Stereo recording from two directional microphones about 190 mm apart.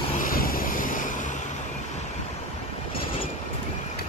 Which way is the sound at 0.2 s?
50° left (ahead or behind).